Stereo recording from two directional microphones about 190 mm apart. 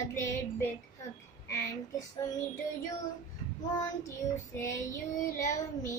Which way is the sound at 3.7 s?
20° left (ahead or behind).